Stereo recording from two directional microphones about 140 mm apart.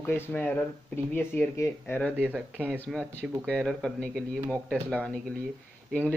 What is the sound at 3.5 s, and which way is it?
Speech, centre (ahead or behind).